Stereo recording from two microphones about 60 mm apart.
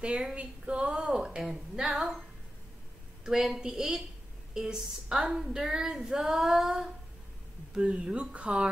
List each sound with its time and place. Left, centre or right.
0.0 s a woman's voice: centre
3.3 s speech: centre
4.6 s female singing: centre
7.7 s speech: centre